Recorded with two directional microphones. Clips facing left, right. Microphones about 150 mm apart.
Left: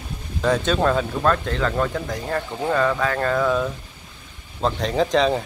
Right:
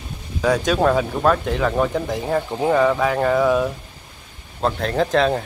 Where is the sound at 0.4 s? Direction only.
10° right (ahead or behind).